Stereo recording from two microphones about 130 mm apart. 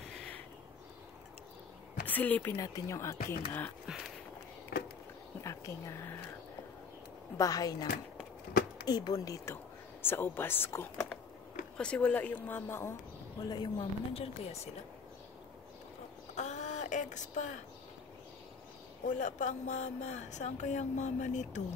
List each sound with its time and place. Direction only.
0.1 s a sound: 5° left (ahead or behind)
2.0 s speech: 15° left (ahead or behind)
5.4 s a sound: 25° left (ahead or behind)
7.3 s speech: 25° left (ahead or behind)
10.0 s speech: 15° left (ahead or behind)
11.7 s speech: 10° left (ahead or behind)
13.4 s speech: 30° left (ahead or behind)
14.1 s speech: 50° left (ahead or behind)
16.3 s a sound: 65° left (ahead or behind)
19.0 s speech: 75° left (ahead or behind)